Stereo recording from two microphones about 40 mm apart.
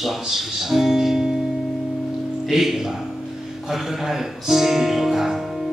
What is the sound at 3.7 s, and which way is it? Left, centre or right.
Music, centre.